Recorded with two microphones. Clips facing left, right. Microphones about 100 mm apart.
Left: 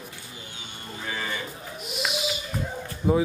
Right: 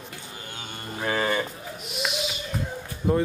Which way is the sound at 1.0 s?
55° right (ahead or behind).